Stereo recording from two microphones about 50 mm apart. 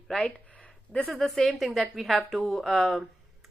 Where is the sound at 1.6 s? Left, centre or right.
Centre.